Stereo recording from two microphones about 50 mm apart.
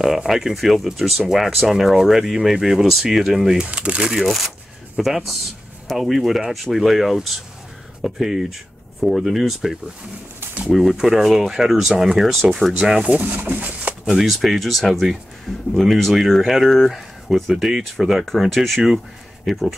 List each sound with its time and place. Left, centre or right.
0.0 s speech: centre
3.6 s speech: right
4.0 s speech: centre
12.7 s speech: centre
13.0 s speech: right
14.0 s speech: centre